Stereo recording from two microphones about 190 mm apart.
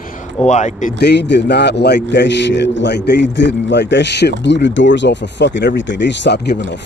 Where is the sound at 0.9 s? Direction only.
65° left (ahead or behind).